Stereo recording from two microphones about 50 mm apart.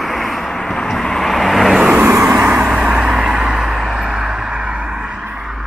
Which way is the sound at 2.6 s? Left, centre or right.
Centre.